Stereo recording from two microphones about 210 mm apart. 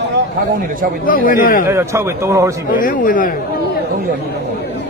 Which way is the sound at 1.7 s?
15° right (ahead or behind).